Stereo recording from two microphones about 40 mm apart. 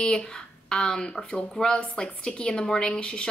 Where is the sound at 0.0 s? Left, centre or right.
Centre.